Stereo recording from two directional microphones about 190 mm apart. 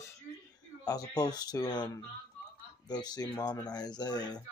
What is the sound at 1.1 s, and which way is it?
Speech, 20° left (ahead or behind).